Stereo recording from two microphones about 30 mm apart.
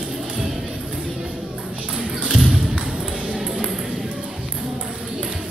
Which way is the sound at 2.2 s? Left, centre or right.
Right.